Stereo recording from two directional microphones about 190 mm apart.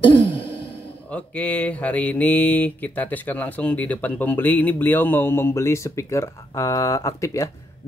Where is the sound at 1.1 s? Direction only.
5° left (ahead or behind).